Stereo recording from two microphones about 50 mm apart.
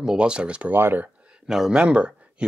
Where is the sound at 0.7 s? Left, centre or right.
Right.